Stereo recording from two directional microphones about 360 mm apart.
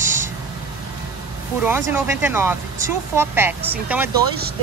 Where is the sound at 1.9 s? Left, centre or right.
Centre.